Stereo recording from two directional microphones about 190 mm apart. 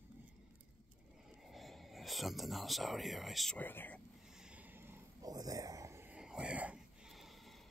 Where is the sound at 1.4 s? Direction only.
Centre (ahead or behind).